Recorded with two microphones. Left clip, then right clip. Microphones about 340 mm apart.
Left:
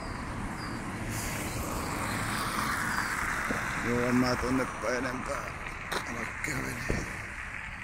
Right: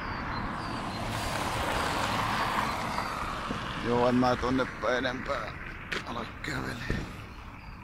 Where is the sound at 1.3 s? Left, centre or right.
Right.